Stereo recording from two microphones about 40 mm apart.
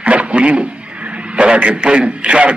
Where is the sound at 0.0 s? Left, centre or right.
Right.